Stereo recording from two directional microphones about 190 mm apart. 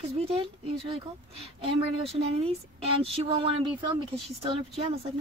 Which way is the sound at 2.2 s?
30° right (ahead or behind).